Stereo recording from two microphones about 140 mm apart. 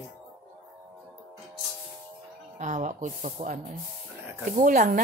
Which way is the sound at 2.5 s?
60° right (ahead or behind).